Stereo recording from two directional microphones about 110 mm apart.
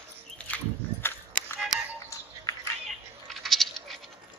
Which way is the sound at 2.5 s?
30° left (ahead or behind).